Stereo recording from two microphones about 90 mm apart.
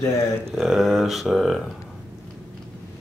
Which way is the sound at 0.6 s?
Centre (ahead or behind).